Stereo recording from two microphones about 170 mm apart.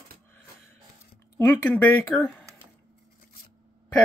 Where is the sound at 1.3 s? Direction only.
15° left (ahead or behind).